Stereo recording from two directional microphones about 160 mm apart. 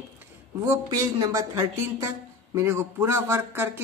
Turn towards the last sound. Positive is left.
turn(degrees=-15)  # may be behind; listen again after turning